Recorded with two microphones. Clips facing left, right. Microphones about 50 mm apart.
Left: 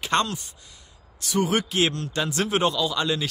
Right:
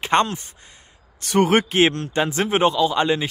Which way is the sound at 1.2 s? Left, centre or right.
Right.